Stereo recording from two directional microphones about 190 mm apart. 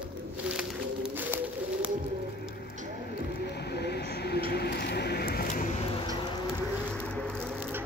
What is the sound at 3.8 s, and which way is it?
Vehicle, 60° left (ahead or behind).